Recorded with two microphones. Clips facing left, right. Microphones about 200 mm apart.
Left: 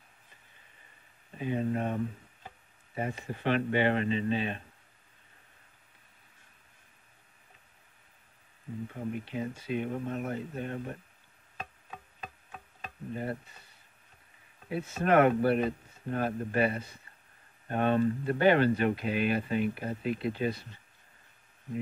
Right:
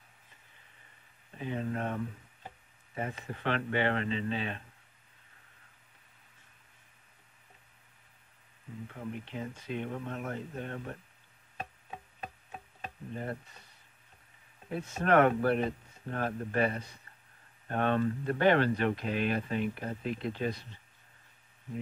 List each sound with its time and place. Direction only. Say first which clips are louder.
1.4 s speech: left 4 dB; 15° left (ahead or behind)
3.2 s speech: left 5 dB; 15° left (ahead or behind)
8.9 s speech: left 4 dB; 10° left (ahead or behind)
13.1 s speech: left 3 dB; 5° left (ahead or behind)
14.7 s speech: left 1 dB; 5° left (ahead or behind)